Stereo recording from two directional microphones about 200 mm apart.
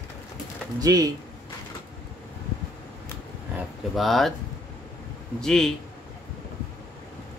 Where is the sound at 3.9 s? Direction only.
Centre (ahead or behind).